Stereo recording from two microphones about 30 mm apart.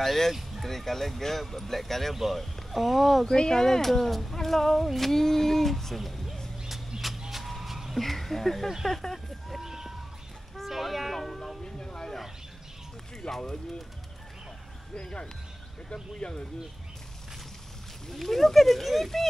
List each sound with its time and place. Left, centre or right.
0.0 s speech: centre
2.2 s speech: centre
3.3 s speech: left; by 6.2 s centre
7.2 s vehicle: centre
8.0 s speech: centre
9.6 s bird: centre
10.7 s a sound: centre
11.6 s a sound: left
13.2 s speech: left
15.9 s speech: left
18.0 s speech: centre